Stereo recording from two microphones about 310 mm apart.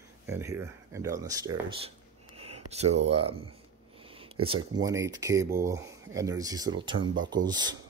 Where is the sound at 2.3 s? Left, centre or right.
Centre.